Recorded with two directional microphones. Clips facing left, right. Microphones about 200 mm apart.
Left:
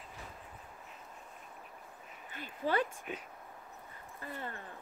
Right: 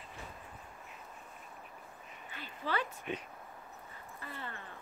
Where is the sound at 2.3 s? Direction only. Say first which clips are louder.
Left 4 dB; 45° left (ahead or behind).